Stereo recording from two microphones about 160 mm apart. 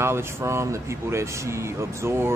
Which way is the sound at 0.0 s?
15° right (ahead or behind).